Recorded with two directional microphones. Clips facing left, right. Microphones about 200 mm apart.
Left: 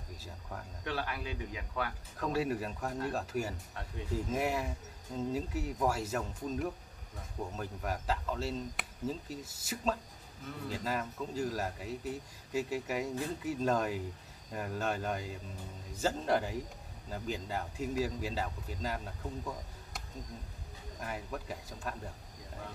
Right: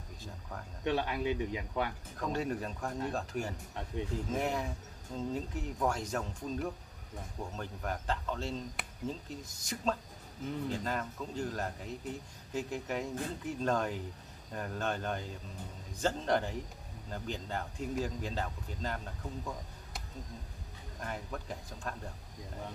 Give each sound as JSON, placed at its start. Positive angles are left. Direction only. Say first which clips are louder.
{"t": 0.8, "sound": "speech", "louder": "right 6 dB", "side_deg": -20}
{"t": 2.3, "sound": "speech", "louder": "left 2 dB", "side_deg": 5}
{"t": 21.0, "sound": "speech", "louder": "even", "side_deg": 5}